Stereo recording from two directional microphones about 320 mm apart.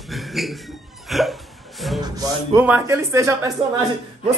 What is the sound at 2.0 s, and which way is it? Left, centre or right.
Speech, centre.